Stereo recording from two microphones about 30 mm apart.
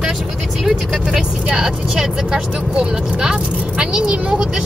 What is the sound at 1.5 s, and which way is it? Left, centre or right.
Speech, right.